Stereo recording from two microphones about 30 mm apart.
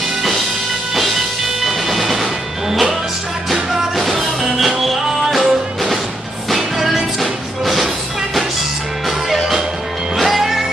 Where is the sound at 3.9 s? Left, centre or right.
Centre.